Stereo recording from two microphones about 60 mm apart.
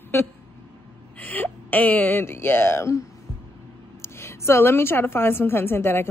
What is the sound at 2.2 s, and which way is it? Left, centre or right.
A woman's voice, left.